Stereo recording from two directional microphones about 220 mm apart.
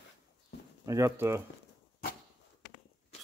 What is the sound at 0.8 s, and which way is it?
Speech, 15° right (ahead or behind).